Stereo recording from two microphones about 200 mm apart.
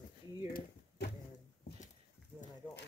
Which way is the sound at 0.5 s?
45° left (ahead or behind).